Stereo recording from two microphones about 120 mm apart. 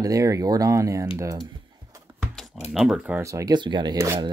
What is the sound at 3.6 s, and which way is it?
Speech, 40° right (ahead or behind).